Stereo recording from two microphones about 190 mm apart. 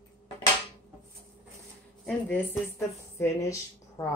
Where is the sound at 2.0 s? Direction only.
5° left (ahead or behind).